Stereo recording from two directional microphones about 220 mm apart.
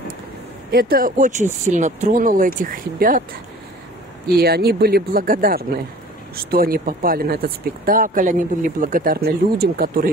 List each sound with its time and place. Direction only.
0.7 s speech: 45° right (ahead or behind)
4.4 s speech: 45° right (ahead or behind)